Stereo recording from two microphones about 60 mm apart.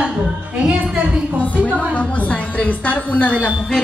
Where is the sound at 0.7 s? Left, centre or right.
Centre.